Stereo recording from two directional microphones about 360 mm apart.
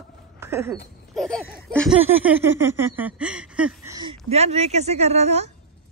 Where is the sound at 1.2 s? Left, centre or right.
Centre.